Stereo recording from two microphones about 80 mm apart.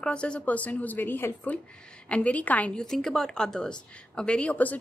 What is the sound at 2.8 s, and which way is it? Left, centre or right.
Speech, centre.